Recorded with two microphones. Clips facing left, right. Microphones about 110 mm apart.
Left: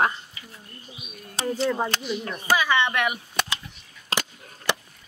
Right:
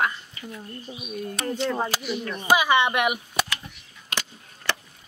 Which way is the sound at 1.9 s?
10° right (ahead or behind).